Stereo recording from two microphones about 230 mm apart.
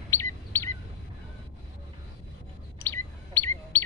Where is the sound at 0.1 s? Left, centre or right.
Centre.